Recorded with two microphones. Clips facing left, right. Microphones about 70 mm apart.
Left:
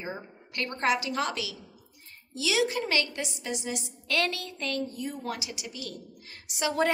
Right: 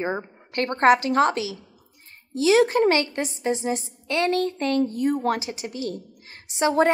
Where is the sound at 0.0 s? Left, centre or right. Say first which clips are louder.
Right 10 dB; right.